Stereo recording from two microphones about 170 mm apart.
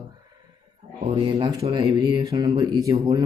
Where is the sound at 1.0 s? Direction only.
25° right (ahead or behind).